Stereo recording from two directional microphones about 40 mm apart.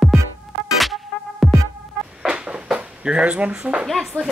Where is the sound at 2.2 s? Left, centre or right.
Right.